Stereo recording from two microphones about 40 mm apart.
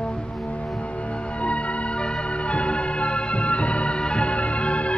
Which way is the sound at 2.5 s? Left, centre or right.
Left.